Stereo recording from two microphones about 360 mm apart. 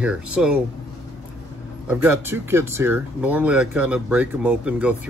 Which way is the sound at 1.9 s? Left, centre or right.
Centre.